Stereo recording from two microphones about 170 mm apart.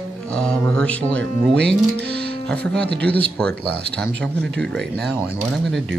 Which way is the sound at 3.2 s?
5° left (ahead or behind).